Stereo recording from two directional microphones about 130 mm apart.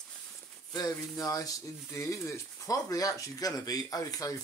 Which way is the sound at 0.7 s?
30° left (ahead or behind).